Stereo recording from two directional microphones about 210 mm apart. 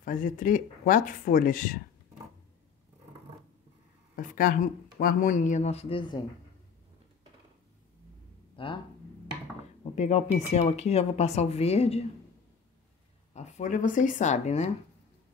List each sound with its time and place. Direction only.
0.0 s speech: 40° left (ahead or behind)
4.2 s speech: 40° left (ahead or behind); by 6.1 s 25° left (ahead or behind)
8.6 s speech: 25° left (ahead or behind)
9.9 s speech: 30° left (ahead or behind)
13.3 s speech: 35° left (ahead or behind)